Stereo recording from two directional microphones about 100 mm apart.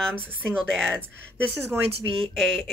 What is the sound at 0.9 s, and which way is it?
Speech, 20° right (ahead or behind).